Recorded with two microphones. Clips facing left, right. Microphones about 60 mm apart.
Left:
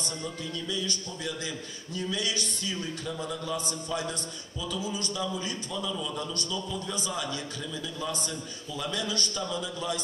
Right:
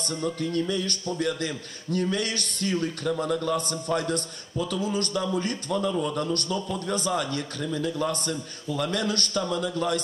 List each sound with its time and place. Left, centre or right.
0.2 s a man's voice: right